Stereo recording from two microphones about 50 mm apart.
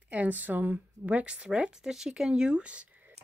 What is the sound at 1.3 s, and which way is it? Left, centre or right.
Speech, centre.